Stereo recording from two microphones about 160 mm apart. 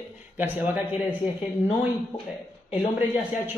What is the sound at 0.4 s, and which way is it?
Speech, 10° right (ahead or behind).